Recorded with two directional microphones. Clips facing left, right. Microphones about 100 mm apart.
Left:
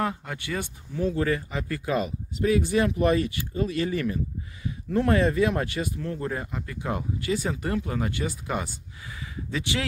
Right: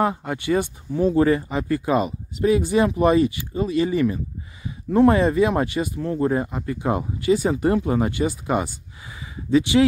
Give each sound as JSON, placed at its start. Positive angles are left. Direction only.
{"t": 0.0, "sound": "speech", "side_deg": -20}